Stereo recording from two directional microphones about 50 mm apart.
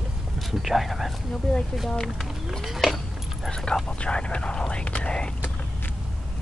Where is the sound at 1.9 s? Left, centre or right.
Centre.